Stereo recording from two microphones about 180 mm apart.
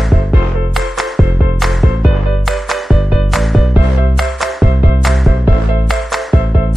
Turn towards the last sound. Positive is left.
turn(degrees=0)  # may be behind; listen again after turning